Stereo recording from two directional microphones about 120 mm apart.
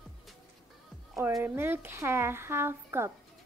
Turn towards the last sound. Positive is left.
turn(degrees=-20)  # may be behind; listen again after turning